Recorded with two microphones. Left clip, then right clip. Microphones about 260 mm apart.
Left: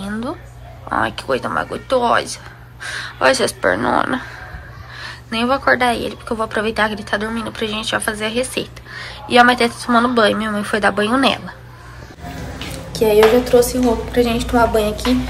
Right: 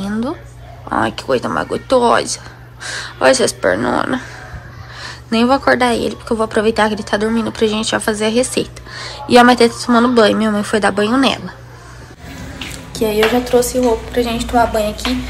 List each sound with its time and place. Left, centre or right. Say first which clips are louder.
0.0 s a sound: right 4 dB; centre
0.8 s a woman's voice: right 2 dB; centre
12.9 s a woman's voice: left 3 dB; centre